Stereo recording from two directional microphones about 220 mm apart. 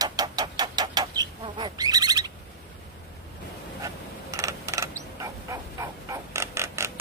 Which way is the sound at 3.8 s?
15° right (ahead or behind).